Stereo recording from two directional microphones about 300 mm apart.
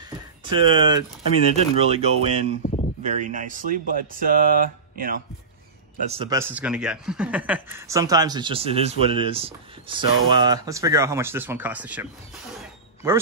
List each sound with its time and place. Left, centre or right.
0.5 s speech: centre
2.6 s a sound: left
3.0 s speech: right; by 12.1 s centre